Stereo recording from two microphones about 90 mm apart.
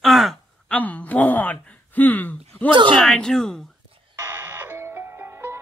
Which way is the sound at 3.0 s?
5° left (ahead or behind).